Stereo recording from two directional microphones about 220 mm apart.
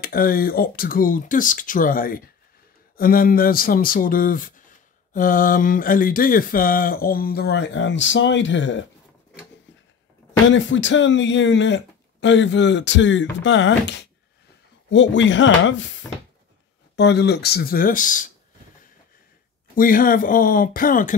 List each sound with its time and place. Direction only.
0.0 s speech: 40° left (ahead or behind)
10.5 s speech: 55° left (ahead or behind); by 18.3 s 35° left (ahead or behind)
19.7 s speech: 40° left (ahead or behind)